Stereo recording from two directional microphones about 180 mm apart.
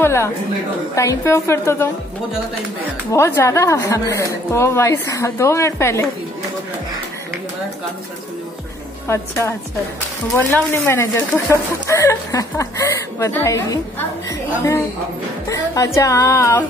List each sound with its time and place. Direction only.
0.0 s a woman's voice: 15° left (ahead or behind)
3.1 s a woman's voice: 15° left (ahead or behind)
9.0 s a woman's voice: 15° left (ahead or behind)
15.4 s a woman's voice: 20° left (ahead or behind)